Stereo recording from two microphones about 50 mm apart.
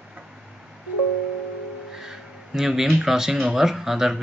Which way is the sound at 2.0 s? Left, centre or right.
Centre.